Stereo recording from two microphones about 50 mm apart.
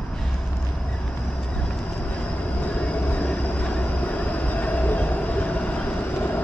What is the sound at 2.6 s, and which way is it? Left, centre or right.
Train, left.